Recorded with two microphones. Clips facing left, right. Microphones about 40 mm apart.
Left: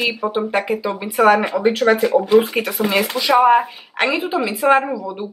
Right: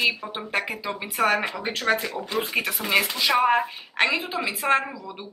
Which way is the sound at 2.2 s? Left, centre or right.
Centre.